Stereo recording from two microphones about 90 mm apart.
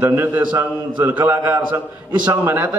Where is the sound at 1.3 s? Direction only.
35° right (ahead or behind).